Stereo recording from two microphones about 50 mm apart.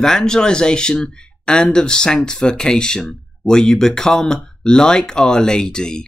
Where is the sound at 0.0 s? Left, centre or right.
Centre.